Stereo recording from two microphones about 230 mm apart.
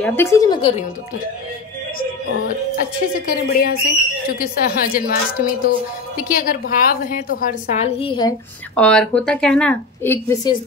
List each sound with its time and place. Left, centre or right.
0.0 s a woman's voice: centre
2.4 s speech: left; by 8.4 s centre
8.7 s a woman's voice: centre